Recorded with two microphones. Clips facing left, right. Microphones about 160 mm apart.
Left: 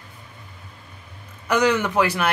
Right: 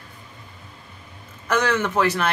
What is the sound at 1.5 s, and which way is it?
Speech, 15° left (ahead or behind).